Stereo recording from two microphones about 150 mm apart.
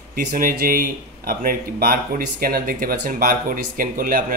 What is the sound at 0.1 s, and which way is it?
Speech, 70° right (ahead or behind).